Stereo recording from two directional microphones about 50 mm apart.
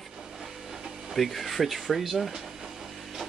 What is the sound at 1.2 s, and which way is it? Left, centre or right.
Speech, centre.